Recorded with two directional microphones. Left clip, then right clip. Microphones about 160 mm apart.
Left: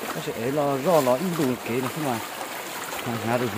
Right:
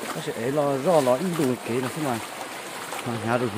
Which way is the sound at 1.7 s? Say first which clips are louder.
Even; centre (ahead or behind).